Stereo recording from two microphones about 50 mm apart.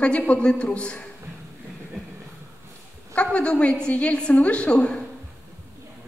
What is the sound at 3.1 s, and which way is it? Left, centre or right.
A woman's voice, left.